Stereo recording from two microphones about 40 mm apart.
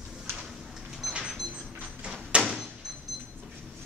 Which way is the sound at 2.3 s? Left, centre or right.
Centre.